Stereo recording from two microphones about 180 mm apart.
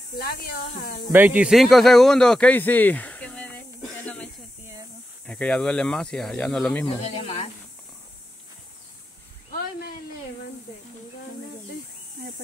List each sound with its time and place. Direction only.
0.2 s speech: 55° left (ahead or behind)
1.1 s speech: 10° right (ahead or behind); by 6.9 s 5° left (ahead or behind)
7.0 s speech: 40° left (ahead or behind)
9.5 s a sound: 55° left (ahead or behind)